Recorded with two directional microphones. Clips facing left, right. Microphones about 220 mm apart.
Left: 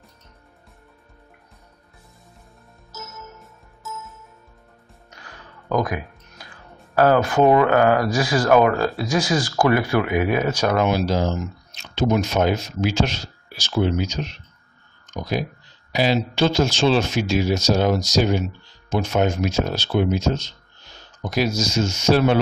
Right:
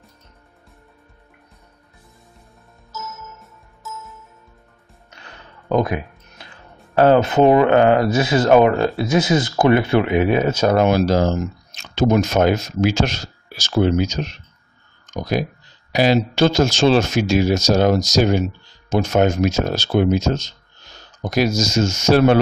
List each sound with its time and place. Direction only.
3.3 s music: centre (ahead or behind)
5.1 s speech: 25° right (ahead or behind)
10.8 s speech: 45° right (ahead or behind)
15.9 s speech: 50° right (ahead or behind)